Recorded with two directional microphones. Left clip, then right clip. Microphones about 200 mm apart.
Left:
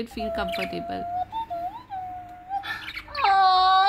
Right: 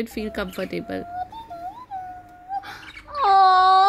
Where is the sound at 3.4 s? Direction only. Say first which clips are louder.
Right 4 dB; 60° right (ahead or behind).